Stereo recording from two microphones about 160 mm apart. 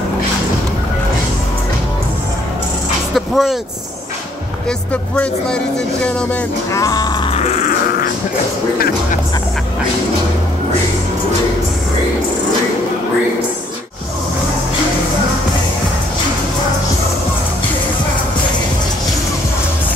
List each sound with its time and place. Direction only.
3.2 s speech: centre (ahead or behind)
4.6 s speech: 5° left (ahead or behind)
6.7 s music: 20° left (ahead or behind)
7.2 s music: 45° left (ahead or behind)
8.7 s speech: 70° left (ahead or behind)